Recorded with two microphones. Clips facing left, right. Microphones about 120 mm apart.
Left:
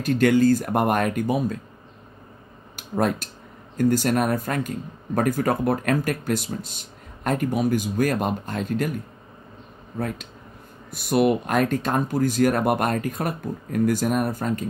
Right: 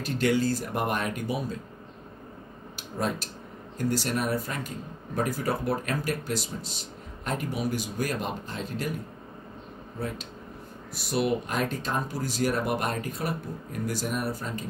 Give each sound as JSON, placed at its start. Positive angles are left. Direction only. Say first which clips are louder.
{"t": 0.0, "sound": "speech", "louder": "left 7 dB", "side_deg": 50}
{"t": 2.7, "sound": "speech", "louder": "left 7 dB", "side_deg": 50}
{"t": 10.9, "sound": "speech", "louder": "left 7 dB", "side_deg": 55}